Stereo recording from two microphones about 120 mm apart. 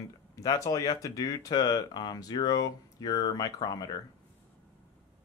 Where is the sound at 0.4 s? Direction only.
30° left (ahead or behind).